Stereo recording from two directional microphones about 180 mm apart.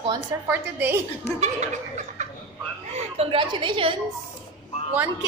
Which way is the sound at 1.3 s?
40° right (ahead or behind).